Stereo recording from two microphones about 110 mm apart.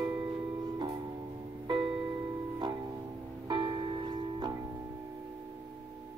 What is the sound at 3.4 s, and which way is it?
Music, 40° right (ahead or behind).